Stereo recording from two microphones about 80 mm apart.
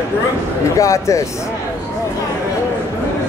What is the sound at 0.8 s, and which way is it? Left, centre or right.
Speech, left.